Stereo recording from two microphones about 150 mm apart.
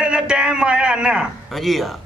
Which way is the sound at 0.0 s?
5° right (ahead or behind).